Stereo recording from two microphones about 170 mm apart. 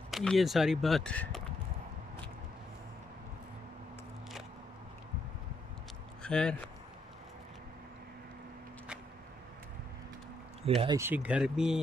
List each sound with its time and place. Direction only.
0.1 s speech: centre (ahead or behind)
6.2 s speech: 5° left (ahead or behind)
10.6 s speech: 35° right (ahead or behind)
11.0 s speech: 10° right (ahead or behind)